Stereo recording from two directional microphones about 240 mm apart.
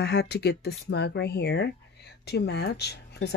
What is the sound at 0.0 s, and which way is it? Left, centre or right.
Speech, left.